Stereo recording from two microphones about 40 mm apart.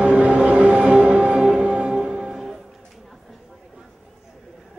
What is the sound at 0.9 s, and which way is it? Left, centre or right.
Music, right.